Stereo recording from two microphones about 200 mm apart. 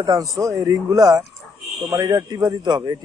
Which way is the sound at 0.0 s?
15° right (ahead or behind).